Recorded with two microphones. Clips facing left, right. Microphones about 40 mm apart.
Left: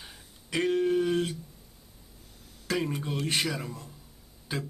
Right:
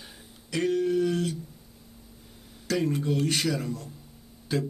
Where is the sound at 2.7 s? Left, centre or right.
Centre.